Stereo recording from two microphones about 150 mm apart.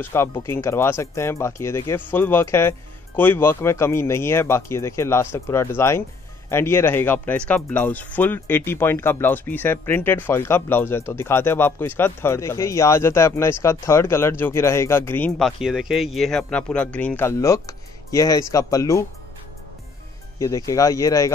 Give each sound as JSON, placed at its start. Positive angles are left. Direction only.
{"t": 0.0, "sound": "speech", "side_deg": 15}
{"t": 20.3, "sound": "speech", "side_deg": 25}